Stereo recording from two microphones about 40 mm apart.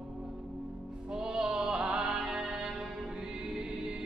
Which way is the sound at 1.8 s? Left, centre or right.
Centre.